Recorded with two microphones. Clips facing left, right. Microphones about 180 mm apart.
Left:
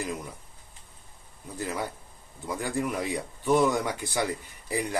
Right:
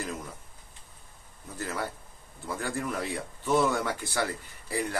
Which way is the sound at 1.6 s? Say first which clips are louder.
Left 2 dB; 15° left (ahead or behind).